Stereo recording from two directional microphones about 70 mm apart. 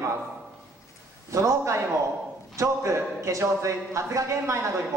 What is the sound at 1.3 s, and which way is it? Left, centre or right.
A man's voice, right.